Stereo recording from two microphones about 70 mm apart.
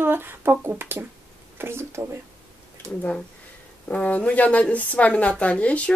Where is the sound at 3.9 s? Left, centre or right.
Centre.